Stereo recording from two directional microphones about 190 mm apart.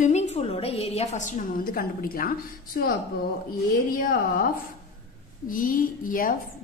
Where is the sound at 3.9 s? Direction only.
50° left (ahead or behind).